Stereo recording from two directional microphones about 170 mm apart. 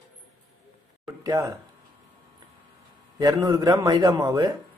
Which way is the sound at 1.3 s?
20° right (ahead or behind).